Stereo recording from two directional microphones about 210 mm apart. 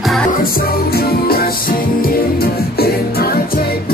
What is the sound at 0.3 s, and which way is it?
Music, 45° left (ahead or behind).